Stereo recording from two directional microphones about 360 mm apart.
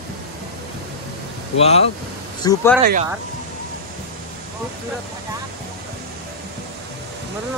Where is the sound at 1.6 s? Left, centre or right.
Centre.